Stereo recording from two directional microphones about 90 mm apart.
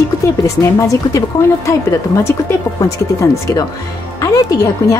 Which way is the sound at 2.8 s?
40° left (ahead or behind).